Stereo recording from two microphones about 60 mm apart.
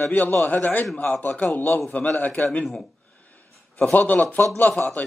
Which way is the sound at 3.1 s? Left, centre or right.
Left.